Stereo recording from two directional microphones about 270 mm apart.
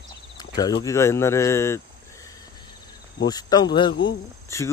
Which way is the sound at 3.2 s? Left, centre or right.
Centre.